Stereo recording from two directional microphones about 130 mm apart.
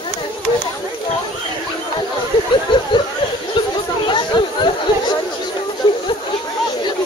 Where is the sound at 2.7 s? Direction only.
40° left (ahead or behind).